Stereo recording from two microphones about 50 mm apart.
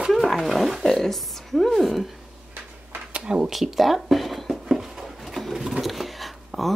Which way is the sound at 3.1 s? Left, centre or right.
Centre.